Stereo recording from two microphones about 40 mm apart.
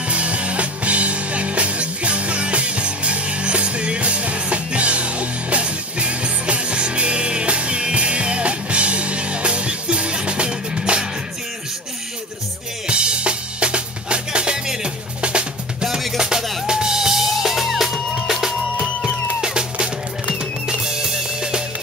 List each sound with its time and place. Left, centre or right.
0.1 s music: right
12.8 s drum kit: right
16.2 s music: centre